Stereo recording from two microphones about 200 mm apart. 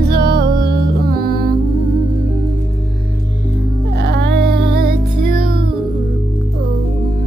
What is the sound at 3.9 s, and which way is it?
Music, 55° right (ahead or behind).